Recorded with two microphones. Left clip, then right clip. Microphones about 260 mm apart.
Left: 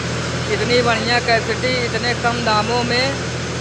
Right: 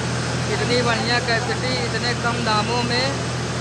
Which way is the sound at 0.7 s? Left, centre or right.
Centre.